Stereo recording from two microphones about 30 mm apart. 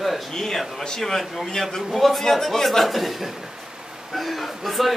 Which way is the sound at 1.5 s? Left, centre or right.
Centre.